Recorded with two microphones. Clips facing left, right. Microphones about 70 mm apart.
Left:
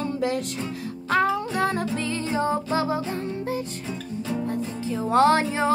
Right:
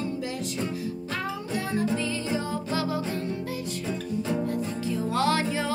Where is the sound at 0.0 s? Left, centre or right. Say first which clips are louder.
Left 5 dB; left.